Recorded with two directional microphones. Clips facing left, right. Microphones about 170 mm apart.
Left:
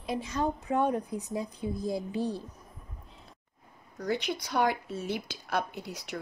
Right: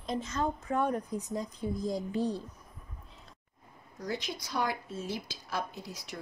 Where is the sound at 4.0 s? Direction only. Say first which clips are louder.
Left 5 dB; 65° left (ahead or behind).